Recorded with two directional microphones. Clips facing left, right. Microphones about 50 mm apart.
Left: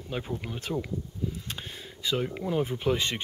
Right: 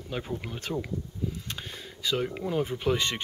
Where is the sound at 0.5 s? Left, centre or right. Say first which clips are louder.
Left 1 dB; centre.